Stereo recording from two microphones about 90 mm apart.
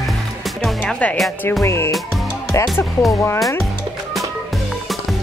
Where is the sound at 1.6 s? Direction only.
30° left (ahead or behind).